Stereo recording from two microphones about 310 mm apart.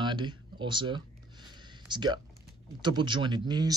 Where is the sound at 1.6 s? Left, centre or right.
Centre.